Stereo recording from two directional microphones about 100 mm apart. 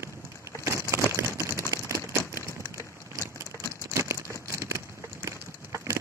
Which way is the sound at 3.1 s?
25° right (ahead or behind).